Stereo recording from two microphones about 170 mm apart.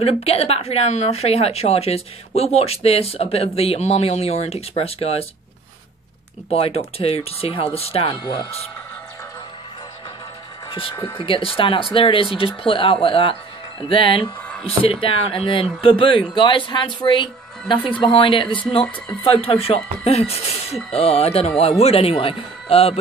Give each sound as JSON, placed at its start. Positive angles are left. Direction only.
{"t": 0.0, "sound": "speech", "side_deg": 35}
{"t": 6.5, "sound": "speech", "side_deg": 35}
{"t": 10.7, "sound": "speech", "side_deg": 30}